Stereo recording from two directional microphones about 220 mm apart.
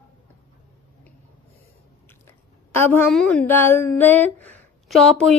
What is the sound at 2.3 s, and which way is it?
A woman's voice, 10° left (ahead or behind).